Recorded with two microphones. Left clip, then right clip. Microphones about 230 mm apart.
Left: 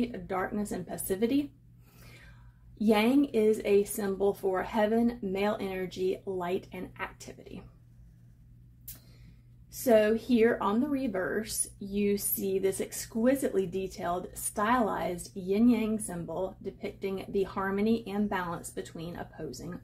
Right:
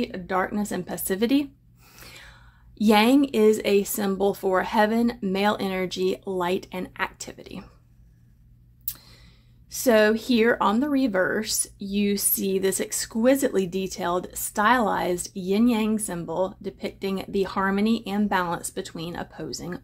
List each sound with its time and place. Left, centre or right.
0.0 s speech: right
2.8 s speech: right
9.7 s speech: right